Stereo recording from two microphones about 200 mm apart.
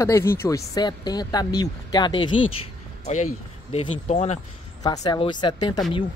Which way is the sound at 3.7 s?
35° left (ahead or behind).